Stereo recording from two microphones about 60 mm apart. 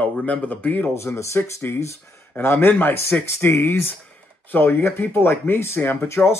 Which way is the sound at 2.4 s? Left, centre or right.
Left.